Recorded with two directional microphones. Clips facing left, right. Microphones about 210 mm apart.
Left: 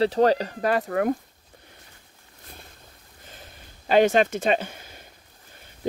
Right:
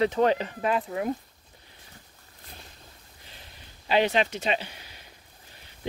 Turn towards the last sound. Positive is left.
turn(degrees=50)  # may be behind; listen again after turning